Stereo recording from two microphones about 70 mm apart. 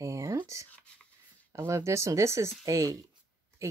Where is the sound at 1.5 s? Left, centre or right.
Right.